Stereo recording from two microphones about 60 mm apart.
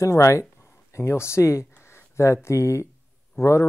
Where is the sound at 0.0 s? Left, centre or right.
Left.